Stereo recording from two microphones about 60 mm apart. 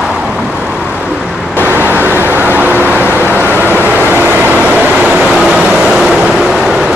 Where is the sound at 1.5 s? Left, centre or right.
Right; by 6.8 s centre.